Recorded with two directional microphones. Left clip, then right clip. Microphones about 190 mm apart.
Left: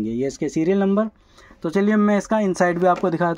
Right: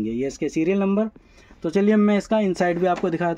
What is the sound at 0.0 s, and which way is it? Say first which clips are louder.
Speech: left 1 dB; 20° left (ahead or behind).